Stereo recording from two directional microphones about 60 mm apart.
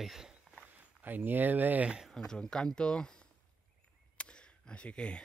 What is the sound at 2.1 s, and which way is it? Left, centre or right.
Speech, centre.